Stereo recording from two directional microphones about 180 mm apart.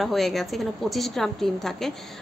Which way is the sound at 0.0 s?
Centre (ahead or behind).